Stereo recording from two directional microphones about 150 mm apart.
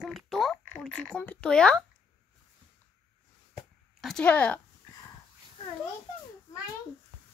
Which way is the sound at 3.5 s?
Centre (ahead or behind).